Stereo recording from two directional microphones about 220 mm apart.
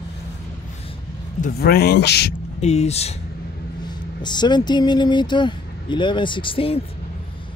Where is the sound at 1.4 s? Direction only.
45° left (ahead or behind).